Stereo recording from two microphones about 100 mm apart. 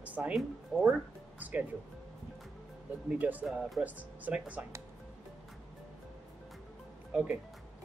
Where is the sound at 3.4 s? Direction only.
5° right (ahead or behind).